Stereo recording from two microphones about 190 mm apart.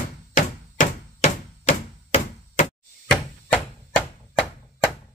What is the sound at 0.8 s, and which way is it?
Chop, 35° left (ahead or behind).